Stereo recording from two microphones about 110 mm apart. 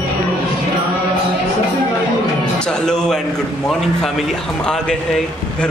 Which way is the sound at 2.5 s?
10° left (ahead or behind).